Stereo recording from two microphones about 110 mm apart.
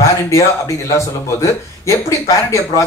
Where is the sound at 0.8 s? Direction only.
25° left (ahead or behind).